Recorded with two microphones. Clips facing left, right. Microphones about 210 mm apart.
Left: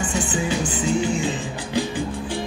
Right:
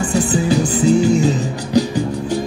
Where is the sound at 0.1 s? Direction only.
35° right (ahead or behind).